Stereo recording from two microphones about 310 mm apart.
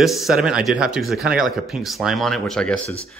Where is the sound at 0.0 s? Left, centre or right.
Centre.